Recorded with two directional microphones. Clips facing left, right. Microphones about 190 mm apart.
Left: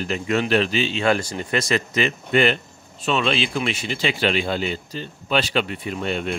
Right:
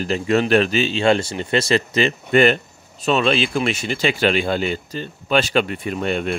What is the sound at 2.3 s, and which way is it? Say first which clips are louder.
Speech: right 4 dB; 45° right (ahead or behind).